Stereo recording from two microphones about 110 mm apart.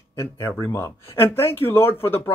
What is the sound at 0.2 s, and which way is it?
Speech, 20° left (ahead or behind).